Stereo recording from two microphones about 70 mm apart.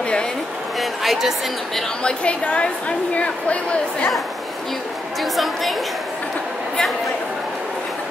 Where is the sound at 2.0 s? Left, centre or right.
Centre.